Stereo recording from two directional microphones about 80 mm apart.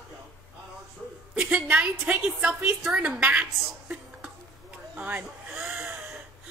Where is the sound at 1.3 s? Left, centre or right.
Centre.